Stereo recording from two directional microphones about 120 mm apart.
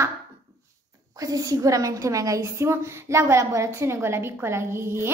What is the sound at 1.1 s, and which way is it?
A child's voice, 30° right (ahead or behind).